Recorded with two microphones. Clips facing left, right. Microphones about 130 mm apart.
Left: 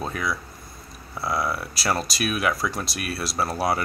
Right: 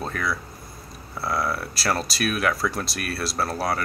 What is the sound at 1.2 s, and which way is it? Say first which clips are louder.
Speech: even; 5° right (ahead or behind).